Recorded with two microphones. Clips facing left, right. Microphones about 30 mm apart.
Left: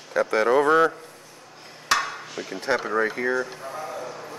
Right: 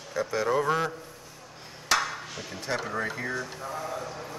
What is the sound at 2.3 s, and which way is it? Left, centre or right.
Speech, left.